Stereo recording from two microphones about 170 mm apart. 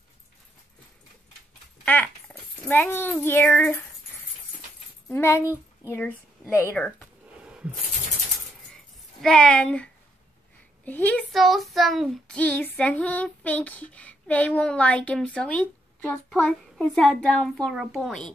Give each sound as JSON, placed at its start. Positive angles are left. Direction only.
{"t": 1.9, "sound": "a sound", "side_deg": 10}
{"t": 3.5, "sound": "child singing", "side_deg": 10}
{"t": 5.1, "sound": "child singing", "side_deg": 15}
{"t": 5.9, "sound": "speech", "side_deg": 15}
{"t": 7.4, "sound": "a sound", "side_deg": -5}
{"t": 9.2, "sound": "speech", "side_deg": 5}
{"t": 10.9, "sound": "child singing", "side_deg": 10}